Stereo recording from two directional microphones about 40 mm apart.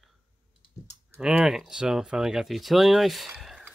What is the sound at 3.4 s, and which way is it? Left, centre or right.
Whispering, centre.